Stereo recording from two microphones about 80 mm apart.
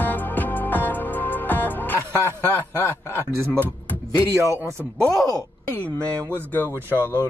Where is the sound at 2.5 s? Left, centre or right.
Left.